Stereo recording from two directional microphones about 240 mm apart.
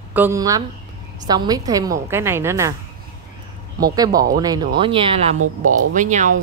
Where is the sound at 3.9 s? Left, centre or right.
Centre; by 6.3 s right.